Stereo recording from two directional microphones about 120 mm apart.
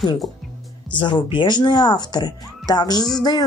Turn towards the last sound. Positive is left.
turn(degrees=35)  # may be behind; listen again after turning